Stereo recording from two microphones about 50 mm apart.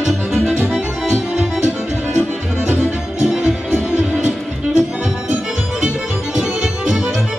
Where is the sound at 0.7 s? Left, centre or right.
Centre.